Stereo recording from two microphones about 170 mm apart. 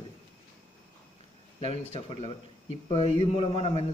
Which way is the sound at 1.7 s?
35° left (ahead or behind).